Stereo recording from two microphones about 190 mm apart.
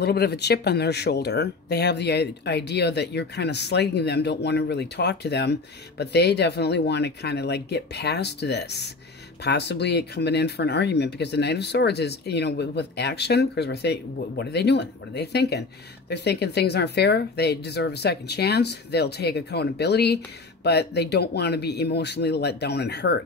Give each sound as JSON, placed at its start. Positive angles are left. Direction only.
{"t": 0.0, "sound": "speech", "side_deg": 60}